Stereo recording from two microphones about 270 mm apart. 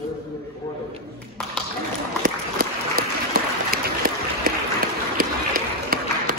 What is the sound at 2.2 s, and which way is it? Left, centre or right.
Applause, right.